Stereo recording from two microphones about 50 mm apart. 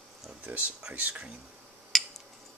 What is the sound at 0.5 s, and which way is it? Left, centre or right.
Speech, right.